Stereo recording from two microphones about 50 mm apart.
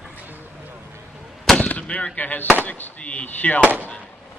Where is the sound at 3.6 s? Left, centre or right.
Right.